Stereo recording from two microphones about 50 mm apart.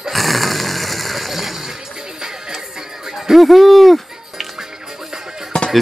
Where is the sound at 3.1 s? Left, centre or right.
Centre.